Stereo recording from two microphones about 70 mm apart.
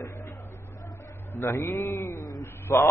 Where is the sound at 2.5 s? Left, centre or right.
Left.